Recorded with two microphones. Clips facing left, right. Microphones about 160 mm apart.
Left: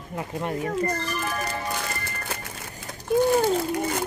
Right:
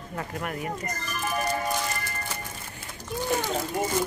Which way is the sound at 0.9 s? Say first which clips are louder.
Left 7 dB; 65° left (ahead or behind).